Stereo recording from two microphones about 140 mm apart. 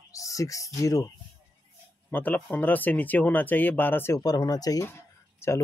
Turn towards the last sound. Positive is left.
turn(degrees=20)  # may be behind; listen again after turning